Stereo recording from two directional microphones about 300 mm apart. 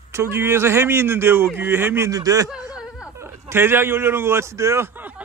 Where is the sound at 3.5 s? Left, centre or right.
Centre.